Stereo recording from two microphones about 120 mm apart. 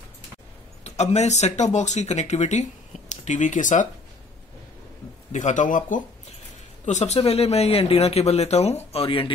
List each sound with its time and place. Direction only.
0.8 s speech: 70° left (ahead or behind); by 3.8 s 90° left
5.3 s speech: 90° left
6.9 s a man's voice: 70° left (ahead or behind); by 9.3 s 50° left (ahead or behind)